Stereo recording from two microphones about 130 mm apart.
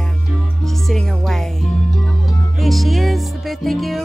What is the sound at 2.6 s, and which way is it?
Speech, centre (ahead or behind).